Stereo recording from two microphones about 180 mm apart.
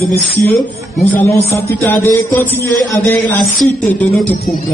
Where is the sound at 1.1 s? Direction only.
10° left (ahead or behind).